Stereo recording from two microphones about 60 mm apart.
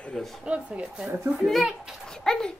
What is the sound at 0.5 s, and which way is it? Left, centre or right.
Speech, right.